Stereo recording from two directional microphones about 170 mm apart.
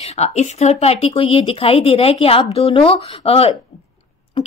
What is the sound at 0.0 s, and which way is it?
Speech, 40° left (ahead or behind).